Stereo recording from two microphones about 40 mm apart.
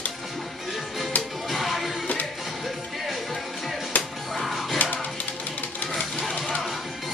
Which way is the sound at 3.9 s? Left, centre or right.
Left.